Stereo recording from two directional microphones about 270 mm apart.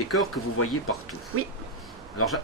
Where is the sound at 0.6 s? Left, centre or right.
Left.